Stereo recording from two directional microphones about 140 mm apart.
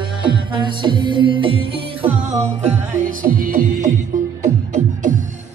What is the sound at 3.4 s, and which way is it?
Music, 80° right.